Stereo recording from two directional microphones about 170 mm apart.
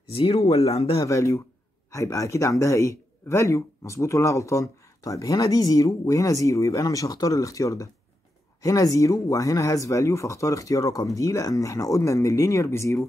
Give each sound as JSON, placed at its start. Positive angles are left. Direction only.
{"t": 0.1, "sound": "speech", "side_deg": 35}
{"t": 1.0, "sound": "speech", "side_deg": 20}